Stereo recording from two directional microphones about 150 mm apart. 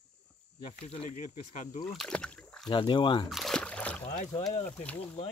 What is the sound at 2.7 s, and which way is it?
Speech, 30° left (ahead or behind).